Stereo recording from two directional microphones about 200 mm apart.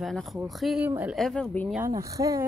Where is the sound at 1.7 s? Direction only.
15° right (ahead or behind).